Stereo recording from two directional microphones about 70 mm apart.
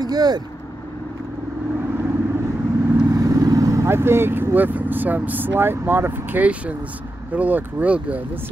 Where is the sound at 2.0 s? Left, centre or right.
Right.